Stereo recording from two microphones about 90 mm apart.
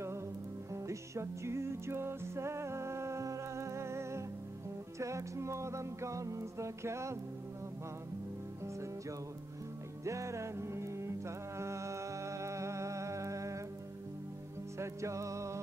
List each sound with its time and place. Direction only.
0.8 s music: 30° right (ahead or behind)
10.0 s music: 35° right (ahead or behind)
14.8 s music: 35° right (ahead or behind)